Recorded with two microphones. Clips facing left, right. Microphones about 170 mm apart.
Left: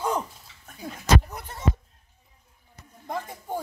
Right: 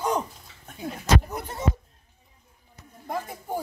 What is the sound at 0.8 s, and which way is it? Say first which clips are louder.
Speech: even; 30° right (ahead or behind).